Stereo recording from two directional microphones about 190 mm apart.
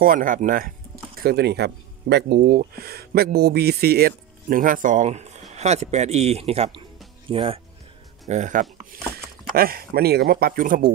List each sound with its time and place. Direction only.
0.0 s speech: 45° right (ahead or behind)
1.2 s speech: 60° right (ahead or behind); by 7.6 s 30° right (ahead or behind)
8.3 s speech: 40° right (ahead or behind)